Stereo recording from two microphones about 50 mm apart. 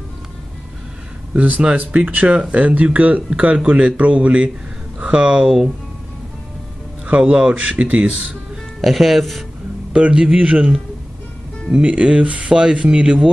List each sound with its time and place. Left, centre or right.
1.3 s speech: right
7.2 s speech: right
8.8 s speech: centre
9.9 s speech: centre